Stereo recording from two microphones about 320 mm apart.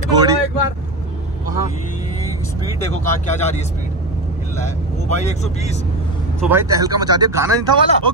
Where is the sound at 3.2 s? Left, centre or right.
Left.